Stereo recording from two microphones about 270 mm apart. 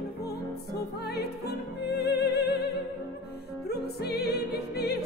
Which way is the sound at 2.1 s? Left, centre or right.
Left.